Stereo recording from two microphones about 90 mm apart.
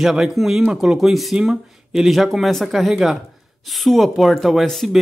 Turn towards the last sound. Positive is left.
turn(degrees=0)  # may be behind; listen again after turning